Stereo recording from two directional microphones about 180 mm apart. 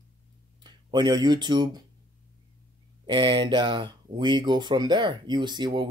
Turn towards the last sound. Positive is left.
turn(degrees=-25)  # may be behind; listen again after turning